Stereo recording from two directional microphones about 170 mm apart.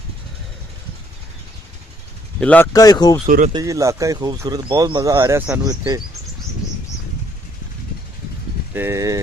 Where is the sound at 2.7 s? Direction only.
20° left (ahead or behind).